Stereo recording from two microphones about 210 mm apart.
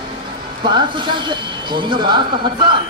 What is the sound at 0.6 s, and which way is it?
Speech, 20° right (ahead or behind).